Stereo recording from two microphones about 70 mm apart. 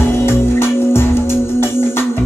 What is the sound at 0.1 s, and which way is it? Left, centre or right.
Music, left.